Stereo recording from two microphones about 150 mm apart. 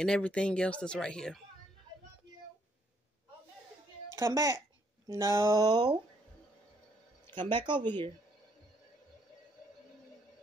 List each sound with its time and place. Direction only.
0.0 s speech: 5° left (ahead or behind)
4.1 s a woman's voice: 20° right (ahead or behind)
5.0 s a sound: 20° right (ahead or behind)
5.7 s speech: 30° right (ahead or behind)
7.3 s speech: 30° right (ahead or behind)